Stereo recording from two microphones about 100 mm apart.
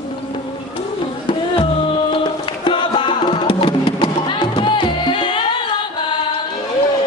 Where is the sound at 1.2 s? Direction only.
55° left (ahead or behind).